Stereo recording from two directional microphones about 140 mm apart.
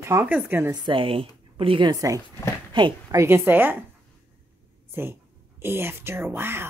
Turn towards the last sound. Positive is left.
turn(degrees=-15)  # may be behind; listen again after turning